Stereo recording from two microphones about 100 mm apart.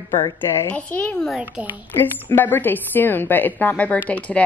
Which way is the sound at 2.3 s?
20° left (ahead or behind).